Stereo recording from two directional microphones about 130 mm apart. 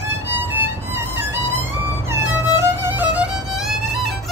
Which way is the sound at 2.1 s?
15° right (ahead or behind).